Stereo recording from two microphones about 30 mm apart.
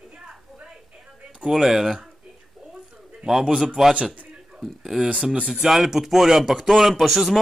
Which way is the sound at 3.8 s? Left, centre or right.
Centre.